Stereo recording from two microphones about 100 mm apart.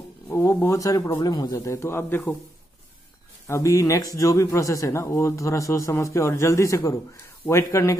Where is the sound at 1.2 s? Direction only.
40° left (ahead or behind); by 2.3 s 25° left (ahead or behind).